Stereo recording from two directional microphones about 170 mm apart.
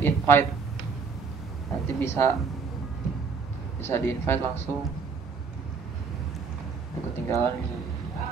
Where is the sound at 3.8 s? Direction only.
15° left (ahead or behind).